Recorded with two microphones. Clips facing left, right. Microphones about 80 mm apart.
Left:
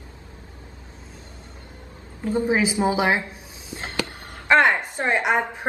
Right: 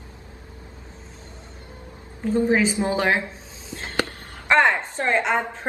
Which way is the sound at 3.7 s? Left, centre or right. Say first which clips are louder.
Right 2 dB; centre.